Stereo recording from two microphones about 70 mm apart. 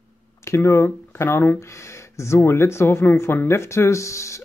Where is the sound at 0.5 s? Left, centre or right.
Left.